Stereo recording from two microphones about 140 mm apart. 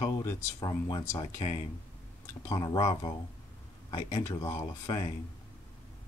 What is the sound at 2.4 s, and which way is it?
Speech, 25° left (ahead or behind).